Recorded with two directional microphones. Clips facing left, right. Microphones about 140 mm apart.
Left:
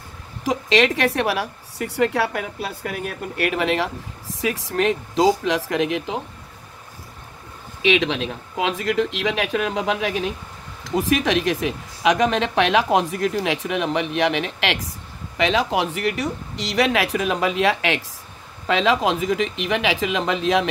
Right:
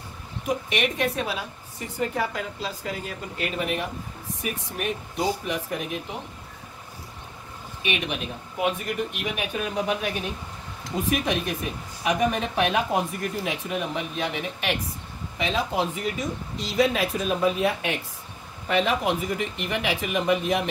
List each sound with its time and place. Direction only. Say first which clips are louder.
0.4 s a woman's voice: left 7 dB; 90° left
7.8 s a woman's voice: left 9 dB; 90° left